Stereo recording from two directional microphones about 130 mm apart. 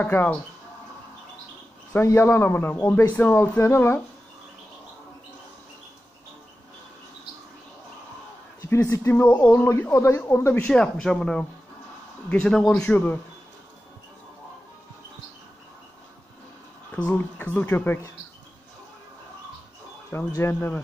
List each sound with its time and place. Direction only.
0.0 s a man's voice: 15° left (ahead or behind)
1.9 s a man's voice: 20° left (ahead or behind)
8.5 s a man's voice: 20° left (ahead or behind)
16.9 s a man's voice: 15° left (ahead or behind)
20.1 s a man's voice: 20° left (ahead or behind)